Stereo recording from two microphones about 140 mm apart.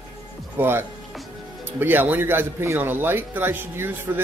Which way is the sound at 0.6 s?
15° right (ahead or behind).